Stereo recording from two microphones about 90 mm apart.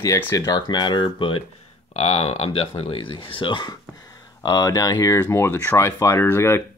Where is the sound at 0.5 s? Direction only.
50° left (ahead or behind); by 1.4 s 65° left (ahead or behind).